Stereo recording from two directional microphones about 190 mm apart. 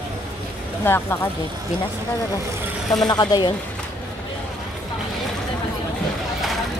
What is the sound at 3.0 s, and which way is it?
Speech, 20° left (ahead or behind).